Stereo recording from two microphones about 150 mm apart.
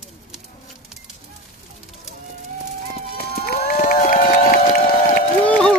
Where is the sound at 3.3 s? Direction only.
85° left.